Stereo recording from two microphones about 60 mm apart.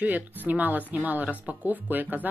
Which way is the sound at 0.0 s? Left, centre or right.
Right.